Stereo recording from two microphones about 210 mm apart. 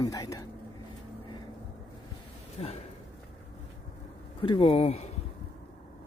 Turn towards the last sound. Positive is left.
turn(degrees=30)  # may be behind; listen again after turning